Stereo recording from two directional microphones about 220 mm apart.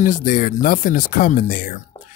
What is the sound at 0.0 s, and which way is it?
Speech, 35° left (ahead or behind).